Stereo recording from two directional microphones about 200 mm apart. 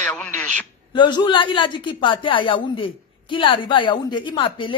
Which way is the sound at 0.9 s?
25° left (ahead or behind).